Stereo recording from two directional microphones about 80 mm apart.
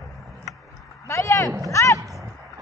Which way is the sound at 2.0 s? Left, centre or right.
Right.